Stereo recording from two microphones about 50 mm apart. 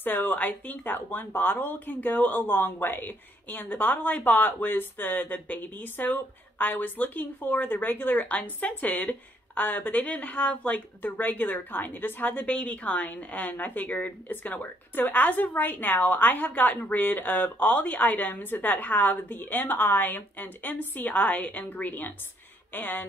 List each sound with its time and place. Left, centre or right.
0.0 s speech: left